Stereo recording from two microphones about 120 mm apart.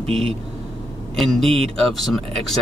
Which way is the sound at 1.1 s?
5° left (ahead or behind).